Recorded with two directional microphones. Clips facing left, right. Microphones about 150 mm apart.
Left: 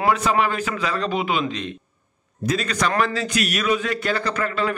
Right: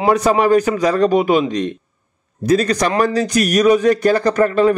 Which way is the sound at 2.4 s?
35° right (ahead or behind).